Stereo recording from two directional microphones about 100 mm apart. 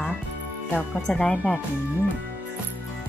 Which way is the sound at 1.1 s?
15° left (ahead or behind).